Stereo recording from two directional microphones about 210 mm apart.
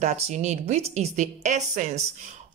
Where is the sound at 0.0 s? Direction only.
35° right (ahead or behind).